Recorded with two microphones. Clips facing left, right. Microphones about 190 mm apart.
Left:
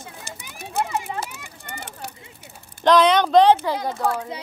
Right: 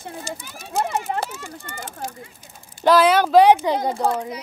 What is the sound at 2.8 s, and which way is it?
Speech, 5° right (ahead or behind).